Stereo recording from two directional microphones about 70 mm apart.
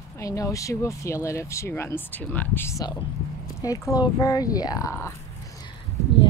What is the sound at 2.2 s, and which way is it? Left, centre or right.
Speech, left.